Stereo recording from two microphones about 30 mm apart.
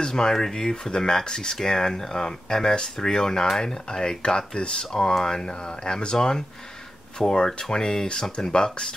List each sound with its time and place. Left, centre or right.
0.1 s speech: centre
4.2 s speech: left
4.9 s speech: centre
6.1 s speech: centre